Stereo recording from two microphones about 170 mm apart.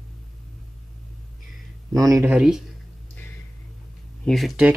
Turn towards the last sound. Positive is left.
turn(degrees=0)  # may be behind; listen again after turning